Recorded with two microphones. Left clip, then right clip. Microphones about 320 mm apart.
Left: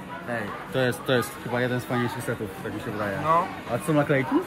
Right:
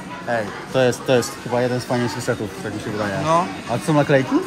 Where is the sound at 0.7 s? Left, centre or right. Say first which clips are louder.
Right 7 dB; centre.